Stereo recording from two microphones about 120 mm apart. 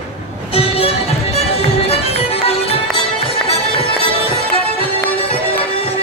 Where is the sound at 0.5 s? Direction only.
55° left (ahead or behind).